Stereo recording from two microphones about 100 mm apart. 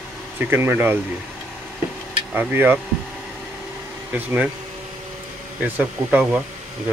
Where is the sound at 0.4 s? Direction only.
20° right (ahead or behind).